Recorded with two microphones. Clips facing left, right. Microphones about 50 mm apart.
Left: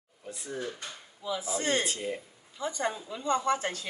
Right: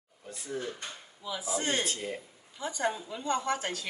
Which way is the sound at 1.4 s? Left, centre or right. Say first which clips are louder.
Left 1 dB; centre.